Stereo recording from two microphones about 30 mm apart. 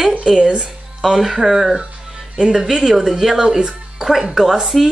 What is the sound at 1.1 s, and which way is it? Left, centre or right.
Speech, centre.